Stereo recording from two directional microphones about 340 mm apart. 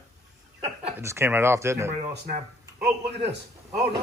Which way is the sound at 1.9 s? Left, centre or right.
Centre.